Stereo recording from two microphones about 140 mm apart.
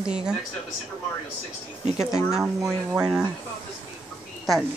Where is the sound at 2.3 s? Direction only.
5° right (ahead or behind).